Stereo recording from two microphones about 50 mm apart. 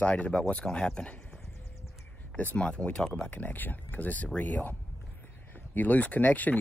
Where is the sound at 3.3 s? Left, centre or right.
Left.